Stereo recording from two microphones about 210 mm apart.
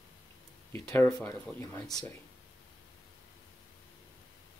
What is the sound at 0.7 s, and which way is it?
Speech, 10° left (ahead or behind).